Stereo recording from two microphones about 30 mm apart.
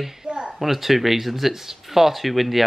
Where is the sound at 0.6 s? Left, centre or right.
Centre.